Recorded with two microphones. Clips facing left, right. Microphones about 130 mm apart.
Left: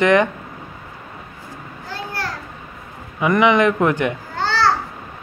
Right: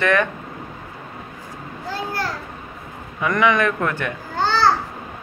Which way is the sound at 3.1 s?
15° left (ahead or behind).